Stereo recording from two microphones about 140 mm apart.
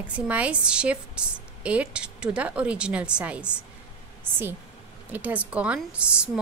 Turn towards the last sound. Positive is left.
turn(degrees=-10)  # may be behind; listen again after turning